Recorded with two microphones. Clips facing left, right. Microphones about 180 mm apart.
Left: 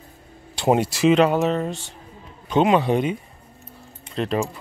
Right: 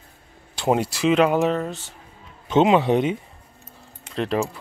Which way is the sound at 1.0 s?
5° right (ahead or behind).